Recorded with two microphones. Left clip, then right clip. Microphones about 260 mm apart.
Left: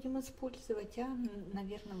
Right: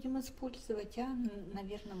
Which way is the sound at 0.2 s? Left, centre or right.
Centre.